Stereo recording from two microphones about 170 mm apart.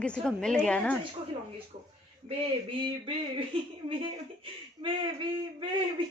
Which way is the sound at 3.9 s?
30° right (ahead or behind).